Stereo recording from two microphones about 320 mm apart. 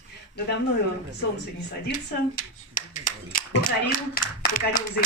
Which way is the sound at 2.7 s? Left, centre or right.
Left.